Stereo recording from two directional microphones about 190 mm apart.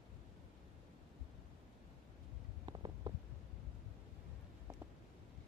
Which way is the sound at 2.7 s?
25° right (ahead or behind).